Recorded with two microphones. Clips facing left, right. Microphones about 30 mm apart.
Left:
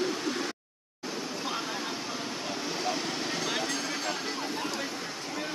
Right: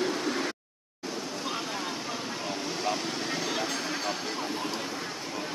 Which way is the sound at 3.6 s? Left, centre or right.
Centre.